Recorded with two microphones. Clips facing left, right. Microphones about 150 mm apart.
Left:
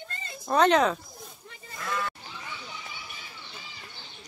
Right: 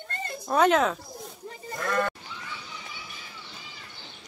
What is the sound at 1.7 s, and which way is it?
Sheep, 55° right (ahead or behind).